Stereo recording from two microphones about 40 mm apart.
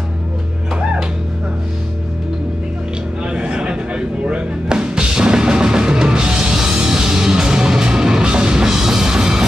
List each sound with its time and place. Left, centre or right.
3.3 s music: right